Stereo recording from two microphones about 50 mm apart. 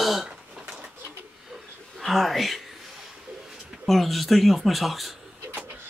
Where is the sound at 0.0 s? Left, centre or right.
Centre.